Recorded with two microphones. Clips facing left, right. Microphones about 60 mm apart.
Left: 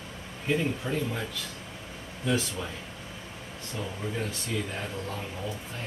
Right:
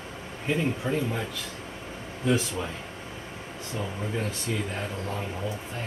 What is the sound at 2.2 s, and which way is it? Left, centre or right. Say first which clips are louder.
Speech: right 3 dB; centre.